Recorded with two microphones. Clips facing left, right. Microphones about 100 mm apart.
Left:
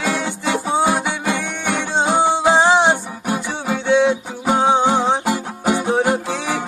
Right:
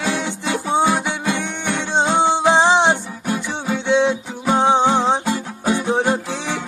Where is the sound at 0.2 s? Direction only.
15° left (ahead or behind).